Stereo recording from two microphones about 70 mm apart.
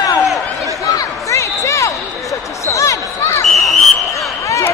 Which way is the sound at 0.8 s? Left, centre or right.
Left.